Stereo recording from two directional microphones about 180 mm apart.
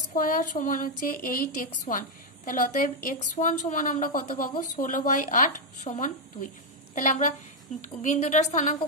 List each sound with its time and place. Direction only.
0.1 s a woman's voice: 45° left (ahead or behind)